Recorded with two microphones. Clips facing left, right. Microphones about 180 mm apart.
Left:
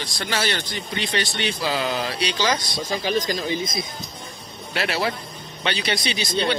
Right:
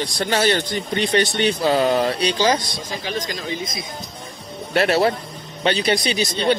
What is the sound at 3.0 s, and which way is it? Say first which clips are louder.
Speech: left 4 dB; 30° left (ahead or behind).